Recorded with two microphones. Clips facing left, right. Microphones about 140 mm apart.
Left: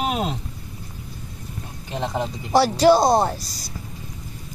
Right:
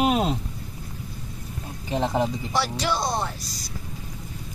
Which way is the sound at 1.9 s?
Centre (ahead or behind).